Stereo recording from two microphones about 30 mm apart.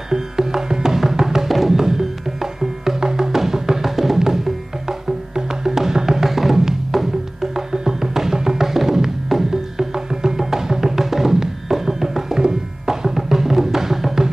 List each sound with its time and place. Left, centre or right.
0.1 s music: centre
1.8 s music: centre